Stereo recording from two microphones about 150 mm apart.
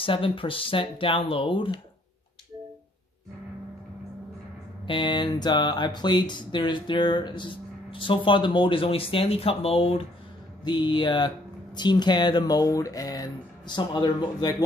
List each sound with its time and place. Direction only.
0.0 s speech: 35° left (ahead or behind)
4.8 s speech: 30° left (ahead or behind)